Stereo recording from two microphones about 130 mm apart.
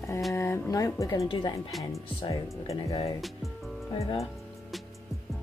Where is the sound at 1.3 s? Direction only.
35° left (ahead or behind).